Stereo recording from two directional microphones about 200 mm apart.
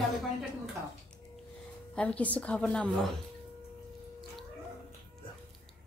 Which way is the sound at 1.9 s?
5° left (ahead or behind).